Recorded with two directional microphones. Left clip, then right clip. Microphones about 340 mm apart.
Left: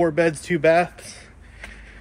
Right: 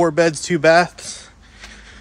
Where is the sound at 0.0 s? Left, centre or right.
Centre.